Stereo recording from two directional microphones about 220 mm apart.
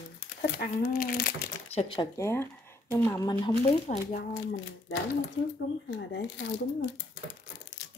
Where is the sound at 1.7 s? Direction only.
20° left (ahead or behind).